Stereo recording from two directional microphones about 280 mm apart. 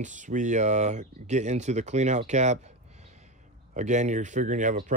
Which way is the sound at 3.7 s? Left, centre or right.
Right.